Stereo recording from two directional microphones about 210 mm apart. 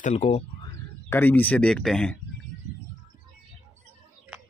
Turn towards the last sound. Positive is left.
turn(degrees=0)  # may be behind; listen again after turning